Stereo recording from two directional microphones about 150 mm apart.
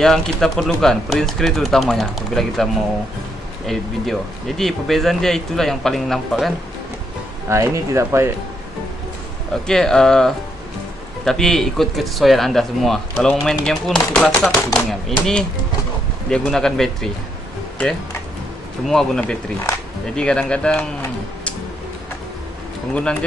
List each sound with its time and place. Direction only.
0.0 s speech: 5° left (ahead or behind)
7.4 s speech: 20° right (ahead or behind)
9.7 s speech: 5° left (ahead or behind)
18.9 s speech: 5° left (ahead or behind)